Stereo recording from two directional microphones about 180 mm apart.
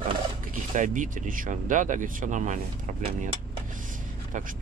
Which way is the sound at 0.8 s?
45° right (ahead or behind).